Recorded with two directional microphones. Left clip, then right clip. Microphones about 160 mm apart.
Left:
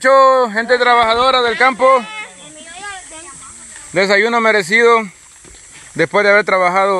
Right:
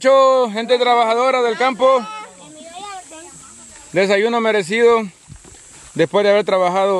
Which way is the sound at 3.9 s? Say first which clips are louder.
Left 3 dB; 10° right (ahead or behind).